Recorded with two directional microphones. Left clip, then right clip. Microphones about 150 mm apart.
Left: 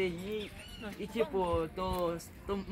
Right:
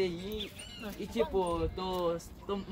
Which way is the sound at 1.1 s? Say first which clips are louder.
Right 1 dB; 20° right (ahead or behind).